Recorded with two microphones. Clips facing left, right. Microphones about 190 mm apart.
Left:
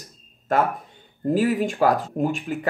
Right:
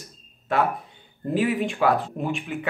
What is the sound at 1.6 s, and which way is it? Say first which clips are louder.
Speech: left 2 dB; 40° left (ahead or behind).